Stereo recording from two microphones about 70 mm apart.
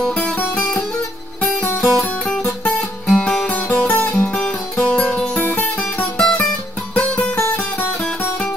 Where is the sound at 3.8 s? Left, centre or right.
Left.